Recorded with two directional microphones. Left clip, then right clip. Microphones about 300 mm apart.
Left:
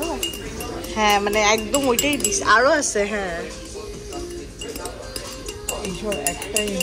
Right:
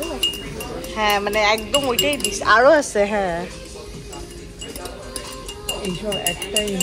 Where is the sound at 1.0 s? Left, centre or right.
Centre.